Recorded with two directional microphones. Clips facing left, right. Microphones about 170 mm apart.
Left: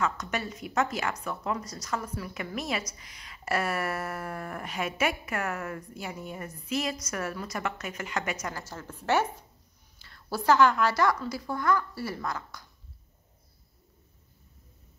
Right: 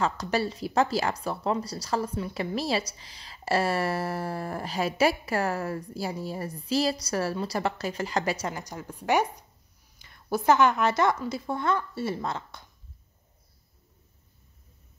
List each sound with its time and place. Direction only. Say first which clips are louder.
0.0 s speech: right 4 dB; 30° right (ahead or behind)
8.5 s a woman's voice: right 3 dB; 15° right (ahead or behind)